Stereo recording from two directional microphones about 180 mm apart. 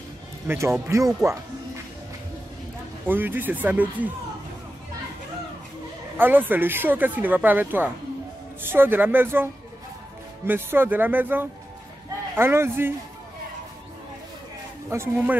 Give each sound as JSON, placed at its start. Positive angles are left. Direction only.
{"t": 0.5, "sound": "speech", "side_deg": -15}
{"t": 3.1, "sound": "speech", "side_deg": -10}
{"t": 6.1, "sound": "speech", "side_deg": -10}
{"t": 14.9, "sound": "speech", "side_deg": -15}